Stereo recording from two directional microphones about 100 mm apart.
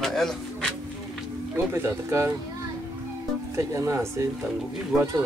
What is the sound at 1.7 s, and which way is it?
Speech, 25° right (ahead or behind).